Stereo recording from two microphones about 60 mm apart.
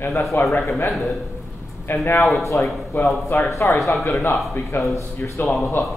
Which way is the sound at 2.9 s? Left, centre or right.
Left.